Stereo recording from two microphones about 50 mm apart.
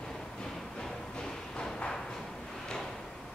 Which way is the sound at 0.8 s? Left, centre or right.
Centre.